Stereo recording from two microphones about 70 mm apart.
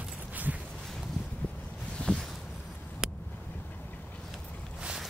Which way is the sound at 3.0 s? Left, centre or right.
Centre.